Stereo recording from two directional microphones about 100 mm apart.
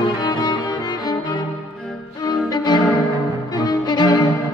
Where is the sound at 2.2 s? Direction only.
45° left (ahead or behind).